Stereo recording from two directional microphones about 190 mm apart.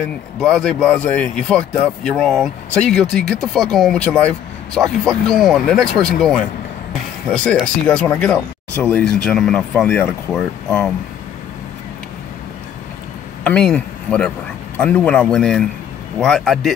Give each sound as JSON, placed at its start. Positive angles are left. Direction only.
{"t": 0.0, "sound": "speech", "side_deg": 0}
{"t": 13.4, "sound": "speech", "side_deg": 5}